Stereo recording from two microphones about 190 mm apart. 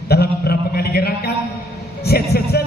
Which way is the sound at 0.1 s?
55° left (ahead or behind).